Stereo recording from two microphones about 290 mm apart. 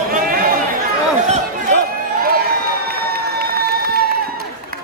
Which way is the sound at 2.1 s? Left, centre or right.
Right.